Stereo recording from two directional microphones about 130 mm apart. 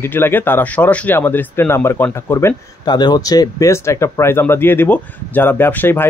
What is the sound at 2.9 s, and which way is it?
Speech, 35° left (ahead or behind).